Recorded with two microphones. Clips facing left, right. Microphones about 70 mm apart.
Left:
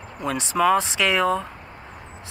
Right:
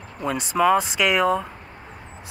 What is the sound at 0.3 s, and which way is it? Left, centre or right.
Speech, centre.